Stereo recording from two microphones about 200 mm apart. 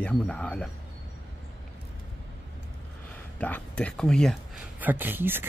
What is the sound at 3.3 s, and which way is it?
Speech, 10° left (ahead or behind).